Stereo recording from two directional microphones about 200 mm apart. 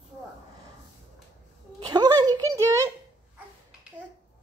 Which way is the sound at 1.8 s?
20° right (ahead or behind).